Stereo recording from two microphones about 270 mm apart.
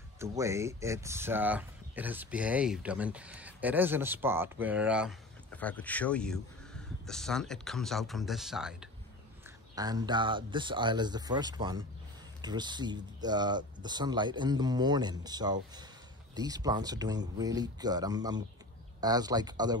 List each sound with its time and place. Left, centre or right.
0.2 s speech: centre
9.8 s speech: centre